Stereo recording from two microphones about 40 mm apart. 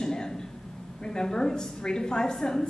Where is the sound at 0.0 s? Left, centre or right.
Centre.